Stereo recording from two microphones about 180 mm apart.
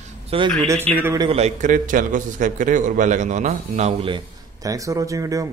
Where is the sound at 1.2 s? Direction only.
35° right (ahead or behind).